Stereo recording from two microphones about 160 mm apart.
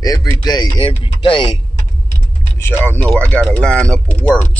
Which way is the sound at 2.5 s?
15° left (ahead or behind).